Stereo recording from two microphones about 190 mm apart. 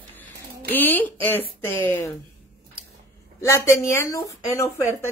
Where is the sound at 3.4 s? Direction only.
15° left (ahead or behind).